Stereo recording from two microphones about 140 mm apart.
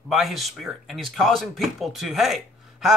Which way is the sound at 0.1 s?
Centre (ahead or behind).